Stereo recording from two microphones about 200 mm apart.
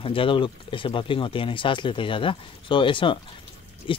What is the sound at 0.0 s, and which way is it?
Speech, 25° left (ahead or behind).